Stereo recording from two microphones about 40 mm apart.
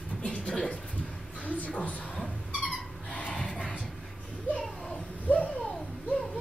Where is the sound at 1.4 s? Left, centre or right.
Left.